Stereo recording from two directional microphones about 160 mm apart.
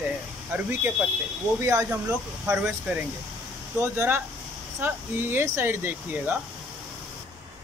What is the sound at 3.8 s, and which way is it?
Speech, 15° right (ahead or behind).